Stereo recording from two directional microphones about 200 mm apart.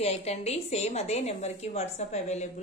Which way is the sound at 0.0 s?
30° left (ahead or behind).